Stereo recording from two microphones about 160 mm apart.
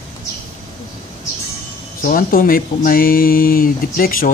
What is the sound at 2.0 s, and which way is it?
Speech, 65° left (ahead or behind).